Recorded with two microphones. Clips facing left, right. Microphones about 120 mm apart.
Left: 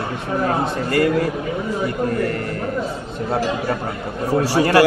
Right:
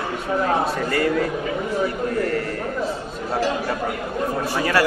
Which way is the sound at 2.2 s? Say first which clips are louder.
Even; 45° left (ahead or behind).